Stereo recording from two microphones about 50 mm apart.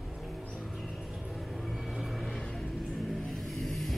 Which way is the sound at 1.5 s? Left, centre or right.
Centre.